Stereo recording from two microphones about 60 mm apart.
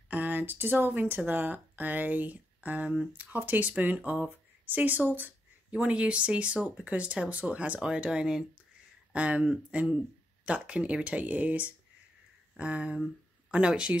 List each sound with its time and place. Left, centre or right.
0.1 s speech: right